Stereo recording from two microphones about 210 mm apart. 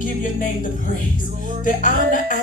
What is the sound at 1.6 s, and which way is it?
Music, 40° left (ahead or behind).